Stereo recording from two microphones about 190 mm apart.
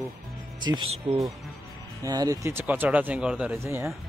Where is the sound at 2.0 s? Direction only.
20° right (ahead or behind).